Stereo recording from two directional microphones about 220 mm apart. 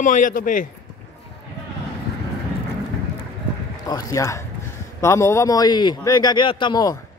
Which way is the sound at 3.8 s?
15° left (ahead or behind).